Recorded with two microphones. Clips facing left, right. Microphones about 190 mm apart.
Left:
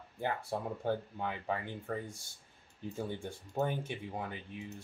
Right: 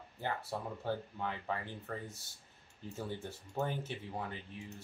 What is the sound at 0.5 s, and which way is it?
Speech, 20° left (ahead or behind).